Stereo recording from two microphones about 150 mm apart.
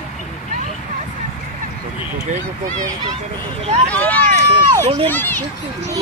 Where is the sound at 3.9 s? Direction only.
10° left (ahead or behind).